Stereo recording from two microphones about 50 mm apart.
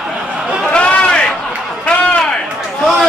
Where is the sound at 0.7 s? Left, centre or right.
Left.